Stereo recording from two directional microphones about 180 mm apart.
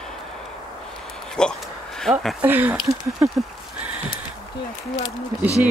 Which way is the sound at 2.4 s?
10° right (ahead or behind).